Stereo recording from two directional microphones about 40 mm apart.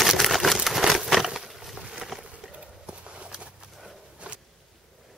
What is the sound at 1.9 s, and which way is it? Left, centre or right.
Boat, centre.